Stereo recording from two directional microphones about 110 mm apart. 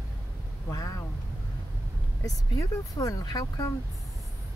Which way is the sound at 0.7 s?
30° left (ahead or behind).